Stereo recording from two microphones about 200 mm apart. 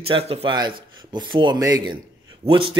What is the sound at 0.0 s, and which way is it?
Speech, 30° right (ahead or behind).